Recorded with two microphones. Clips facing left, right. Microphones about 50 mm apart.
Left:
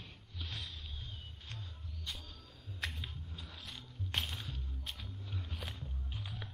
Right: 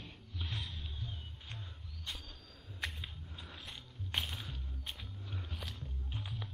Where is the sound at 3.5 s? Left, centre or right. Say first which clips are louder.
Even; centre.